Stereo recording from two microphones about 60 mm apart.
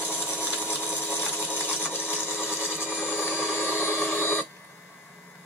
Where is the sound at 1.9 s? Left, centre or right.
Left.